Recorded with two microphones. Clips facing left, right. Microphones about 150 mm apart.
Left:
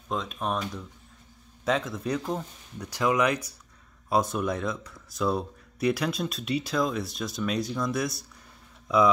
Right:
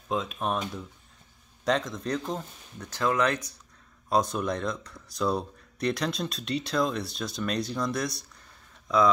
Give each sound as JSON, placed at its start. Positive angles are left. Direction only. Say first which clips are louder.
{"t": 0.1, "sound": "speech", "louder": "right 1 dB", "side_deg": 0}
{"t": 1.6, "sound": "speech", "louder": "even", "side_deg": 5}